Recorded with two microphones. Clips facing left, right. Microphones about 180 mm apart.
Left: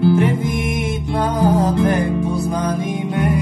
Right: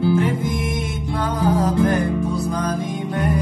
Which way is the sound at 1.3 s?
20° left (ahead or behind).